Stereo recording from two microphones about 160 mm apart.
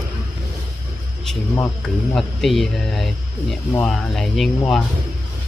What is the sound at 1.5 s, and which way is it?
Speech, 10° left (ahead or behind).